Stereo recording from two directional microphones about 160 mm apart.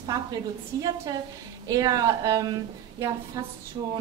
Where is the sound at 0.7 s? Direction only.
25° right (ahead or behind).